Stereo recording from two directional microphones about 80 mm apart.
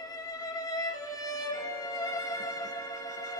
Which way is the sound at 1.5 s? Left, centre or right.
Left.